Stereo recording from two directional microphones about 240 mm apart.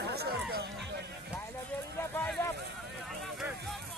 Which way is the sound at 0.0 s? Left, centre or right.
Right.